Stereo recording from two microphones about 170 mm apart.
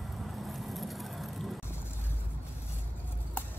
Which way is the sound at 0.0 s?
Centre (ahead or behind).